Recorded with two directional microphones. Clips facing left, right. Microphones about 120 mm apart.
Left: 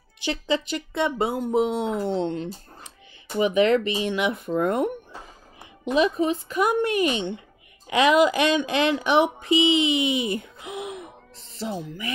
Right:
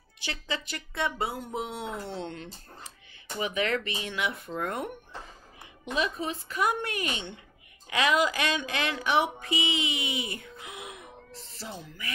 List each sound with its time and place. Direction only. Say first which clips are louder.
0.2 s speech: left 10 dB; 20° left (ahead or behind)